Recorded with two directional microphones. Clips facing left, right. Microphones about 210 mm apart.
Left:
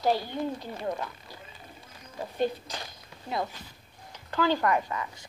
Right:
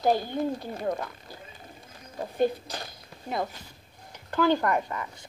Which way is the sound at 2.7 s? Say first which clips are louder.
Right 2 dB; 50° right (ahead or behind).